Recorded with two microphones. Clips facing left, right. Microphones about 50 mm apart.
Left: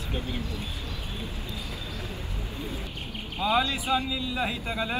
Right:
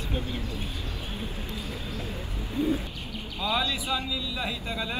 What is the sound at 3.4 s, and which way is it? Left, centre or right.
Speech, left.